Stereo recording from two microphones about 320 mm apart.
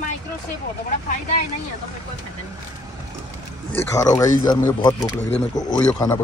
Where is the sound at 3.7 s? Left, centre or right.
Centre.